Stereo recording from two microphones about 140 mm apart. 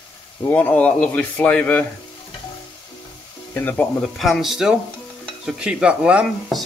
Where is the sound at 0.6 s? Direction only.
10° left (ahead or behind).